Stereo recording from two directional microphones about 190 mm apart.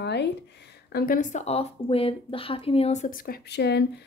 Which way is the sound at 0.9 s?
45° left (ahead or behind).